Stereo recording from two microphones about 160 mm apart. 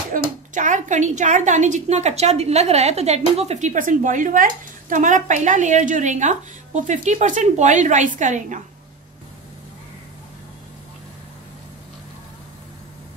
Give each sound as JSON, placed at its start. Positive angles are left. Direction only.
{"t": 0.1, "sound": "a woman's voice", "side_deg": -55}